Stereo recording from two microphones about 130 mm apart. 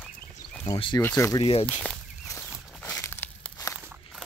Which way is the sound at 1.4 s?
50° left (ahead or behind).